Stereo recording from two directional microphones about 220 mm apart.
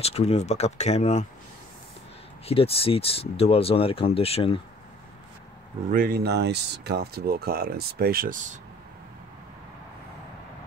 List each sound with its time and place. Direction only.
0.0 s speech: 25° left (ahead or behind)
2.4 s speech: 25° left (ahead or behind)
5.9 s speech: 40° right (ahead or behind)